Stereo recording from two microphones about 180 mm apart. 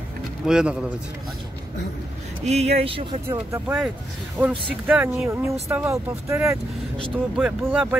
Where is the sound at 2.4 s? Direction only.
35° right (ahead or behind).